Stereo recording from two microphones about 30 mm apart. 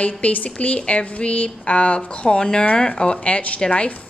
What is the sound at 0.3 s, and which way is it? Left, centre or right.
Speech, left.